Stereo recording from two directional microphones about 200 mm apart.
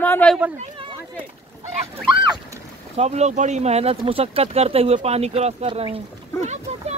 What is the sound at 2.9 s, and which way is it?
Speech, 35° right (ahead or behind).